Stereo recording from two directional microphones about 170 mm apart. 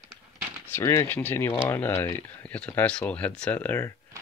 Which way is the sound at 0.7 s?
20° left (ahead or behind).